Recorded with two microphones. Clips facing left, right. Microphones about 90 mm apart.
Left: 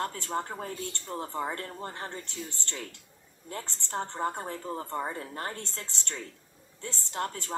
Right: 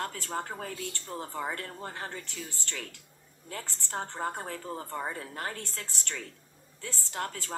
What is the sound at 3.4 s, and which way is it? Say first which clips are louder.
A woman's voice: left 2 dB; 25° left (ahead or behind).